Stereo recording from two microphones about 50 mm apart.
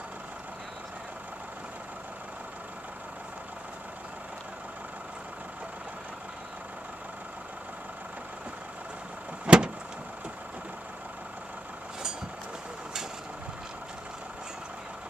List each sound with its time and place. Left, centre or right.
9.5 s vehicle: centre